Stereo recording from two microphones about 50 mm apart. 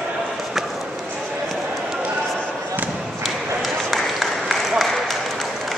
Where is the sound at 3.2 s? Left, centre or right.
Centre.